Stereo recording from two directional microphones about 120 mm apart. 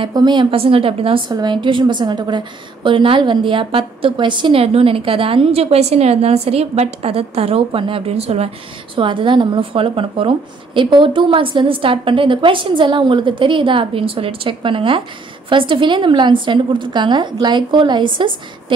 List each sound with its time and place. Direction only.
0.0 s a woman's voice: 40° right (ahead or behind)
1.3 s a woman's voice: 40° right (ahead or behind); by 8.5 s 60° right (ahead or behind)
8.9 s a woman's voice: 45° right (ahead or behind)